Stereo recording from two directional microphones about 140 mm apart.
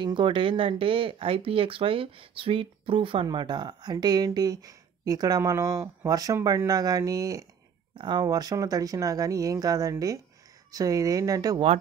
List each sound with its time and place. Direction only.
0.0 s speech: 35° right (ahead or behind)